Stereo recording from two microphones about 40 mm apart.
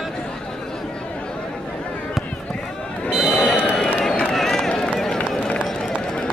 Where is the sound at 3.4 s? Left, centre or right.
Left.